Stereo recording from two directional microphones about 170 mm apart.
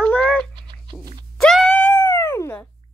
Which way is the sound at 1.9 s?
15° left (ahead or behind).